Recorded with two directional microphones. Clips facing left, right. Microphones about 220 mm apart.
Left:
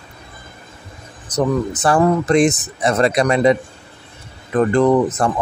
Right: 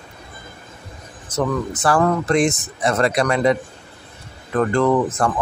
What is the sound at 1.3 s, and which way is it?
A man's voice, 20° left (ahead or behind).